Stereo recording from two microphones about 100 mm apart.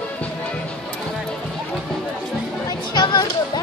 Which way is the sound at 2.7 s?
45° left (ahead or behind).